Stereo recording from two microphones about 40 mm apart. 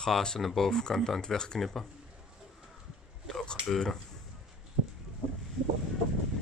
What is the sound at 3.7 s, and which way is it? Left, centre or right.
Speech, centre.